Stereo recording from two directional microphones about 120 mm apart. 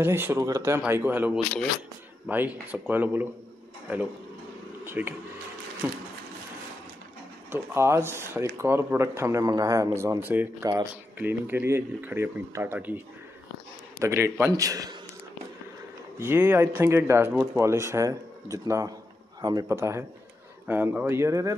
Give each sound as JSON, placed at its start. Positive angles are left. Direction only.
{"t": 0.0, "sound": "speech", "side_deg": -20}
{"t": 4.8, "sound": "speech", "side_deg": -20}
{"t": 7.5, "sound": "speech", "side_deg": -20}
{"t": 10.6, "sound": "speech", "side_deg": -30}
{"t": 11.1, "sound": "speech", "side_deg": -15}
{"t": 16.2, "sound": "speech", "side_deg": -20}